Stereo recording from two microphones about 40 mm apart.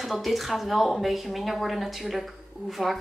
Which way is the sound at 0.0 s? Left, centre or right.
Centre.